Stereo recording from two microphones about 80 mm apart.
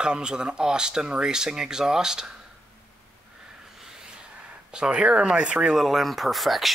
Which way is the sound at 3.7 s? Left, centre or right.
Centre.